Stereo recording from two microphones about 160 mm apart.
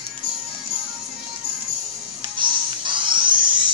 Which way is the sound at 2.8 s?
30° right (ahead or behind).